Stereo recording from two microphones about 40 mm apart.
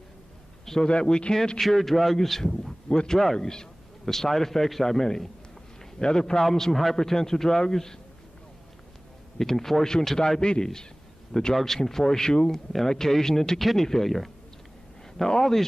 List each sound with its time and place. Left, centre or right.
0.8 s speech: left
1.6 s a man's voice: centre
2.9 s speech: left
3.3 s a man's voice: centre
7.0 s speech: centre
9.4 s a man's voice: centre